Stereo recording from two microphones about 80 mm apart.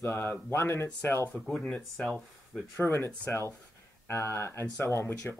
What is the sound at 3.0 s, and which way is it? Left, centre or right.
Speech, left.